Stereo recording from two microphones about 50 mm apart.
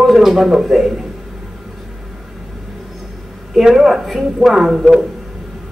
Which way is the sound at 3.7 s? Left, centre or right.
Centre.